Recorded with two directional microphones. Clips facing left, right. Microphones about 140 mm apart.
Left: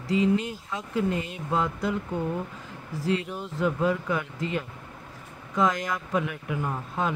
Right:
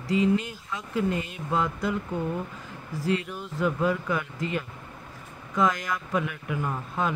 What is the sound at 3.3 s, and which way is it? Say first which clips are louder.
Speech: even; 25° left (ahead or behind).